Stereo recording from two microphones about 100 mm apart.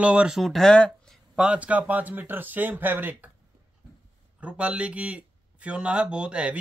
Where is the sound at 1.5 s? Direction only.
15° right (ahead or behind).